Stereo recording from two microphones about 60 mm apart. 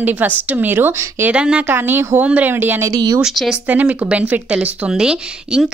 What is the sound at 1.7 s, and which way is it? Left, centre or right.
A woman's voice, right.